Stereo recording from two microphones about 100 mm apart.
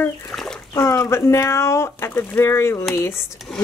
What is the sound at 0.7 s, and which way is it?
Speech, 30° left (ahead or behind).